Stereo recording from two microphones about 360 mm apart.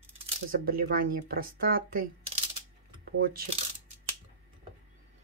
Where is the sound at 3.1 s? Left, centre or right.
Right.